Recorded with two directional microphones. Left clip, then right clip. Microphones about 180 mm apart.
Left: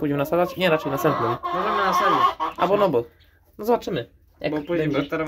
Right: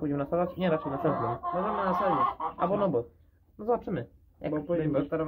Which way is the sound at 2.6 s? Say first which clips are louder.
Left 8 dB; 40° left (ahead or behind).